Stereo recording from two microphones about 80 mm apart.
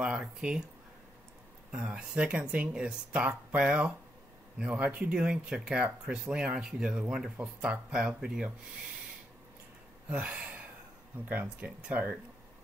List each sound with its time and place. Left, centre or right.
0.0 s speech: centre
1.7 s speech: centre
10.0 s speech: centre